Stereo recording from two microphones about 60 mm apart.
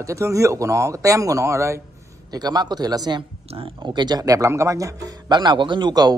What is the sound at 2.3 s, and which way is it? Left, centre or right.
Speech, right.